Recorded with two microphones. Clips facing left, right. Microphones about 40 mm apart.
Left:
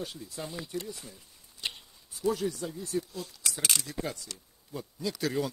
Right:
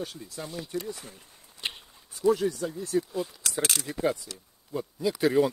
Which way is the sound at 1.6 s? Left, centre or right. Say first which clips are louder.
Right 2 dB; right.